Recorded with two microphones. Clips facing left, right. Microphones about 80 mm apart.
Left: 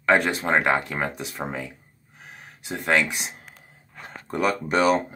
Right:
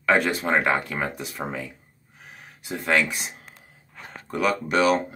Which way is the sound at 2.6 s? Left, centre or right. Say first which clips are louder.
Even; left.